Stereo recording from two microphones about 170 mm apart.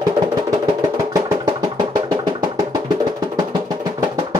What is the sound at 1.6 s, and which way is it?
Music, 25° right (ahead or behind).